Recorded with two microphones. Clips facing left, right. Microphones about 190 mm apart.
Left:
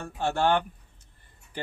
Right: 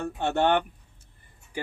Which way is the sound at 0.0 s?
20° right (ahead or behind).